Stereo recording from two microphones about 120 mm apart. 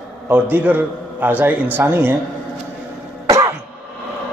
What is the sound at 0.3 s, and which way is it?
A man's voice, 15° right (ahead or behind).